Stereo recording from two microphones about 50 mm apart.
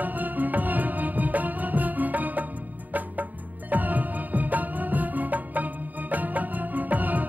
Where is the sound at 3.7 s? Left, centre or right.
Right.